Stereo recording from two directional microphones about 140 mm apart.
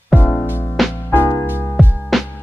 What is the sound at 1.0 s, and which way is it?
Music, 25° left (ahead or behind).